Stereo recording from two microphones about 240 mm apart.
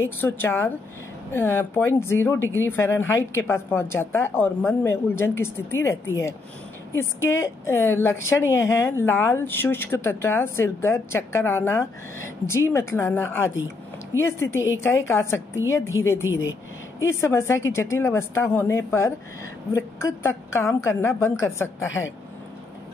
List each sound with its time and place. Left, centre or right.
0.2 s a woman's voice: centre
21.8 s speech: left